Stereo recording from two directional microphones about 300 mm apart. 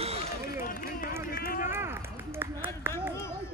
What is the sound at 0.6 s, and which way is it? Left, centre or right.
Run, left.